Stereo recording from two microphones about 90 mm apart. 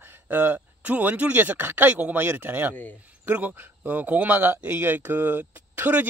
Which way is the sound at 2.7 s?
20° left (ahead or behind).